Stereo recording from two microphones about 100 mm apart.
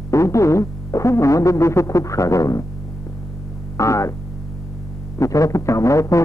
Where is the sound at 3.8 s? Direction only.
30° left (ahead or behind).